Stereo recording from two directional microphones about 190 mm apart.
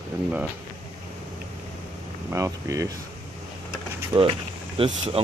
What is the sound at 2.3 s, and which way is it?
Speech, 15° right (ahead or behind).